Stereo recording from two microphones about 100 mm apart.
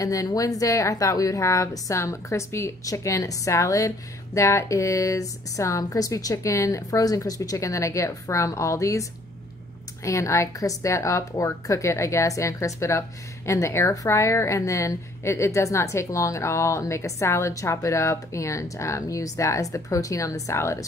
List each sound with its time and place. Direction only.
0.0 s a woman's voice: 35° left (ahead or behind)
10.0 s a woman's voice: 30° left (ahead or behind)